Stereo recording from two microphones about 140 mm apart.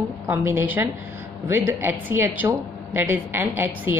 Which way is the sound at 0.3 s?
15° right (ahead or behind).